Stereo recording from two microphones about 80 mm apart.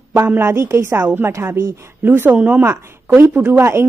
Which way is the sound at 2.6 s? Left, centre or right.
Right.